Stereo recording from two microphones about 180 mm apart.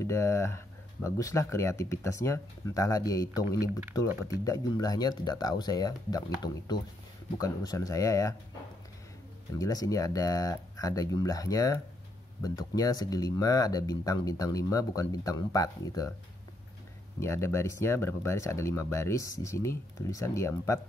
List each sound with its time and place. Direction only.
0.0 s speech: 15° left (ahead or behind)
4.5 s speech: 20° left (ahead or behind)
9.6 s speech: 20° left (ahead or behind)
17.2 s speech: 15° left (ahead or behind)